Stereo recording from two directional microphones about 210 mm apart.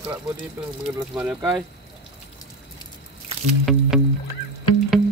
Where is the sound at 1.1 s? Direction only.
5° right (ahead or behind).